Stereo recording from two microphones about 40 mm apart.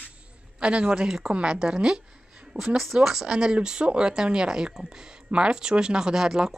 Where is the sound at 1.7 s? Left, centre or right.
Right.